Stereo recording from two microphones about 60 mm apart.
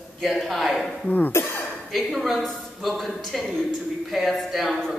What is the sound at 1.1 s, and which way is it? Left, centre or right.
Speech, left.